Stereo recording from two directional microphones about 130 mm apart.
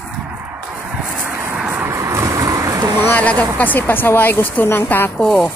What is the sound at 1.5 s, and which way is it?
Vehicle, 10° right (ahead or behind).